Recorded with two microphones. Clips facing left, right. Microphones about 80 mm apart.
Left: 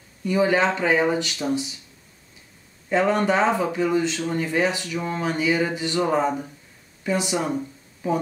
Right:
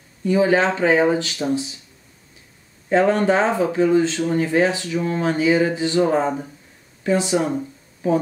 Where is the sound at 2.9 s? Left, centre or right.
Right.